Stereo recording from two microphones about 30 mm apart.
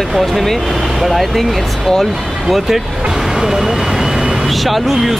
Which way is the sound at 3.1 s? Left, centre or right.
Centre.